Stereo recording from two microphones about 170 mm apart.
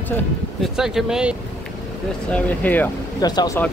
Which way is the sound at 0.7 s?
5° right (ahead or behind).